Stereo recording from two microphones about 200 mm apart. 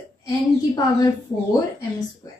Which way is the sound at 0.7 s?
20° left (ahead or behind).